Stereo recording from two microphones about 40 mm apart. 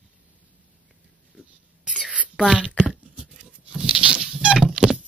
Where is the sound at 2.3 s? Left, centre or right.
Right.